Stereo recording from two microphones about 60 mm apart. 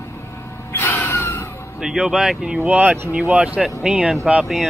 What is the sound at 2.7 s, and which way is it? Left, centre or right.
Speech, right.